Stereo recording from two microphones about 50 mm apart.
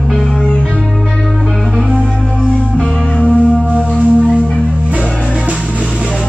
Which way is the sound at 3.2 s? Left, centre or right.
Left.